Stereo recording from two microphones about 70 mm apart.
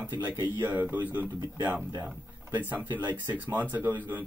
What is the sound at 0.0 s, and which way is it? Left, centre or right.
Speech, right.